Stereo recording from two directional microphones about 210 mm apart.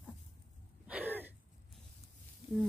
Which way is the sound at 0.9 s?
10° right (ahead or behind).